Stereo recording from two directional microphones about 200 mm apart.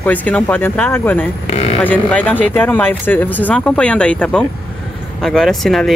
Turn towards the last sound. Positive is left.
turn(degrees=0)  # may be behind; listen again after turning